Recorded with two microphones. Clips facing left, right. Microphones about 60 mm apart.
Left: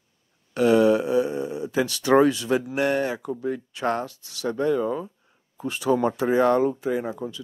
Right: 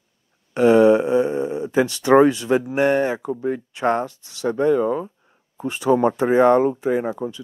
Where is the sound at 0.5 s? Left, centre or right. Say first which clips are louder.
Right 5 dB; right.